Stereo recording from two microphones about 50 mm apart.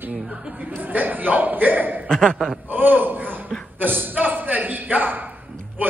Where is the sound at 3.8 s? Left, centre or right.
Right.